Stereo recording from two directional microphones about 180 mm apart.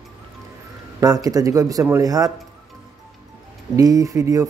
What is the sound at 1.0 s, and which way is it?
Speech, 20° right (ahead or behind).